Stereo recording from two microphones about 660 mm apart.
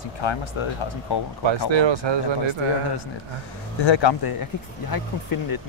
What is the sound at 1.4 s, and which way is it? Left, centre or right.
Speech, right.